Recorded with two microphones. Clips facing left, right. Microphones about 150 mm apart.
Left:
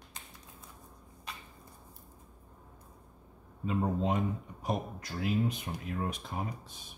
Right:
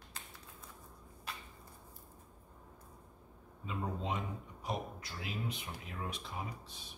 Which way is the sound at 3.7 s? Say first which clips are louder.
Left 8 dB; 50° left (ahead or behind).